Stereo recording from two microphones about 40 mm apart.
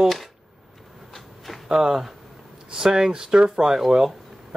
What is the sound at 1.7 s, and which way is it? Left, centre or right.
Speech, centre.